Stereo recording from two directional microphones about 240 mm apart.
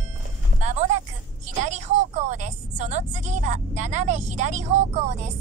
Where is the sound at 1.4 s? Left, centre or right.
Right.